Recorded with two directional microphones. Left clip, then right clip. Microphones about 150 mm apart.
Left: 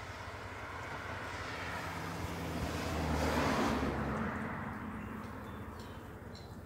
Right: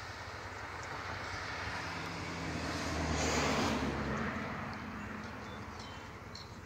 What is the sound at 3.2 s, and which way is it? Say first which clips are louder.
Vehicle: even; 85° right.